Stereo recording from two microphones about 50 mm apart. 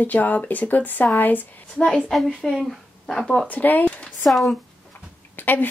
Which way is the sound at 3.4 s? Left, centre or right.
Left.